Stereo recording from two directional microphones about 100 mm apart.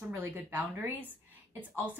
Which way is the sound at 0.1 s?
20° right (ahead or behind).